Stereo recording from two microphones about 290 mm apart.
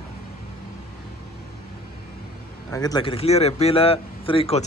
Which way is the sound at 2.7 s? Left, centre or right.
Centre.